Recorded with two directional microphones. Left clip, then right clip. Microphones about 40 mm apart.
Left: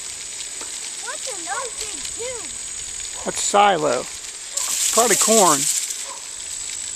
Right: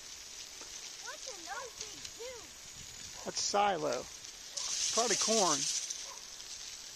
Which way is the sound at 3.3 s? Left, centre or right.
Right.